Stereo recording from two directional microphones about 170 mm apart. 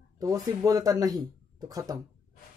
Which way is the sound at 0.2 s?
20° right (ahead or behind).